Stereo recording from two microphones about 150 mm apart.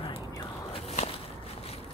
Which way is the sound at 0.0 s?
40° left (ahead or behind).